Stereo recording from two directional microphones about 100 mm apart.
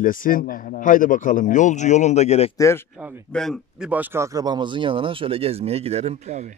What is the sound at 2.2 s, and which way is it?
Speech, 90° left.